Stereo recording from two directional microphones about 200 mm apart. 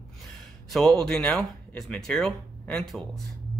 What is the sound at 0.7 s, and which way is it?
Speech, 5° left (ahead or behind).